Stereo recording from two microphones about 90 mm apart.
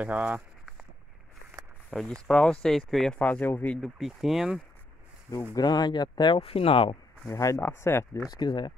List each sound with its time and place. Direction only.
0.0 s speech: 15° right (ahead or behind)
1.9 s speech: 10° left (ahead or behind)
3.2 s speech: 15° left (ahead or behind)
3.7 s speech: centre (ahead or behind)
5.5 s speech: 50° left (ahead or behind)
6.4 s speech: 90° left
7.2 s speech: 35° left (ahead or behind)
8.3 s speech: 55° left (ahead or behind)